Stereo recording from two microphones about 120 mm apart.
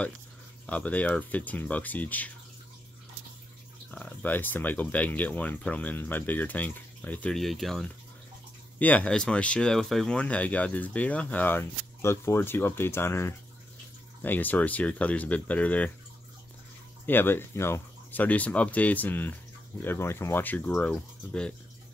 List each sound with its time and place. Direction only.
0.7 s speech: 10° left (ahead or behind)
3.9 s speech: 15° left (ahead or behind)
7.3 s speech: centre (ahead or behind)
8.7 s speech: 15° left (ahead or behind)
17.0 s speech: 15° left (ahead or behind)